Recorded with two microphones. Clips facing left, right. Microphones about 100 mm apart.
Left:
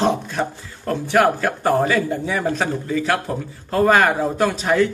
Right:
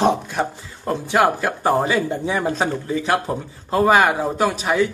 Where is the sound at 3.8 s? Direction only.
10° right (ahead or behind).